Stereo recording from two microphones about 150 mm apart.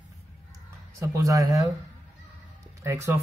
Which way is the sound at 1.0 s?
20° right (ahead or behind).